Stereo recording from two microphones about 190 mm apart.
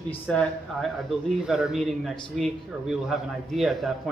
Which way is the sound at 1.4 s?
5° right (ahead or behind).